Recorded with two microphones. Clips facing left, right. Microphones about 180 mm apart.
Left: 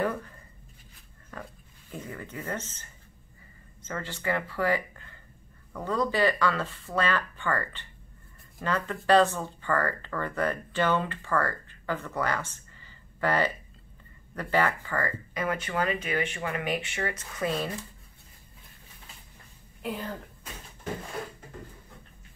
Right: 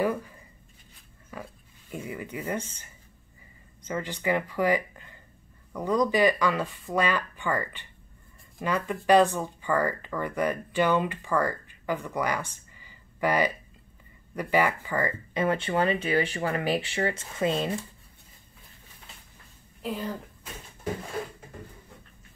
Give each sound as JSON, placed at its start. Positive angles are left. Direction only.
{"t": 0.0, "sound": "writing", "side_deg": -10}
{"t": 1.3, "sound": "speech", "side_deg": -10}
{"t": 19.8, "sound": "speech", "side_deg": 0}